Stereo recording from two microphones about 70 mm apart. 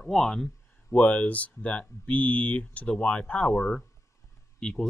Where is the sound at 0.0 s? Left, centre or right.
Centre.